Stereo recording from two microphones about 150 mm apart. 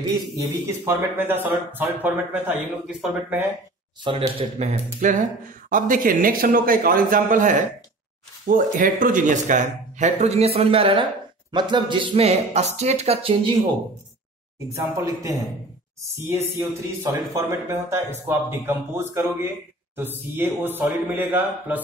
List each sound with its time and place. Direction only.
0.4 s speech: 15° right (ahead or behind)
4.0 s speech: 35° right (ahead or behind)
5.0 s speech: 55° right (ahead or behind); by 13.4 s 40° right (ahead or behind)
14.8 s speech: 25° right (ahead or behind)
16.5 s speech: 20° right (ahead or behind)
20.3 s speech: 15° right (ahead or behind)